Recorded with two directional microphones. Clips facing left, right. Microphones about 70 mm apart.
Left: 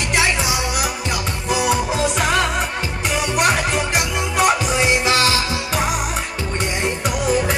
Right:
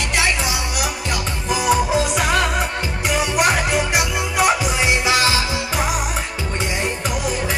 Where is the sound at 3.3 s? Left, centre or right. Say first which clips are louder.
Even; centre.